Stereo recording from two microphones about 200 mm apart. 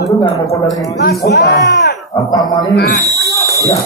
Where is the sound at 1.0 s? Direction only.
50° left (ahead or behind).